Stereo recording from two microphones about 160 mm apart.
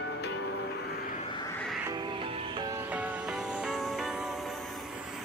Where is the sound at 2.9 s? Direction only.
5° right (ahead or behind).